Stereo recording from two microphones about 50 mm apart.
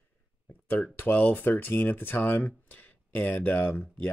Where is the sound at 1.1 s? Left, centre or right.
Left.